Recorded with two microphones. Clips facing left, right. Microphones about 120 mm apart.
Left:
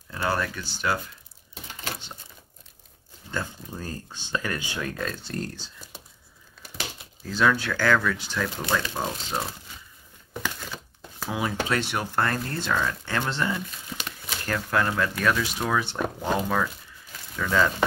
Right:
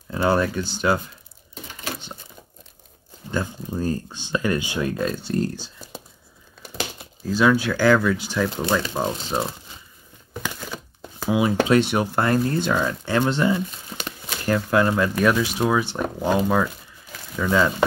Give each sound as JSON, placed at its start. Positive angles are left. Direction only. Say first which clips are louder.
{"t": 0.1, "sound": "speech", "louder": "right 7 dB", "side_deg": -20}
{"t": 3.3, "sound": "speech", "louder": "right 6 dB", "side_deg": -15}
{"t": 7.2, "sound": "speech", "louder": "right 5 dB", "side_deg": -10}
{"t": 11.2, "sound": "speech", "louder": "right 8 dB", "side_deg": -15}